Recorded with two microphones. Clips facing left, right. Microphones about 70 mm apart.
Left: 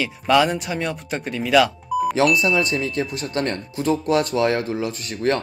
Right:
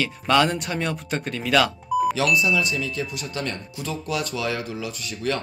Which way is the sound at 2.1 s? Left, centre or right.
Left.